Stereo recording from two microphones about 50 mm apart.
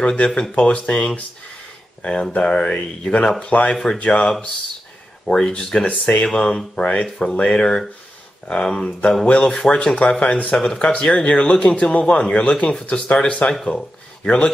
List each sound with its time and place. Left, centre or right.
0.0 s speech: left
2.3 s speech: centre
10.5 s speech: centre
10.8 s speech: left